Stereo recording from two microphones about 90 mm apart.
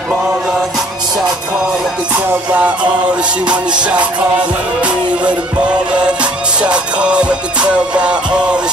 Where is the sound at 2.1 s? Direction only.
20° right (ahead or behind).